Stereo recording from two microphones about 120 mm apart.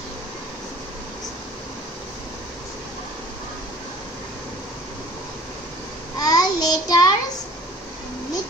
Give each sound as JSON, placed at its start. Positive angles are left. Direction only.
{"t": 6.1, "sound": "child singing", "side_deg": 30}